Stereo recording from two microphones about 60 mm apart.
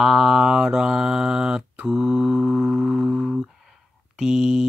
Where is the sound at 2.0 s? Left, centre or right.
Right.